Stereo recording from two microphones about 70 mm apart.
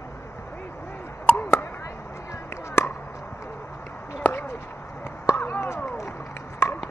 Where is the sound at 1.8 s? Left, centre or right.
Left.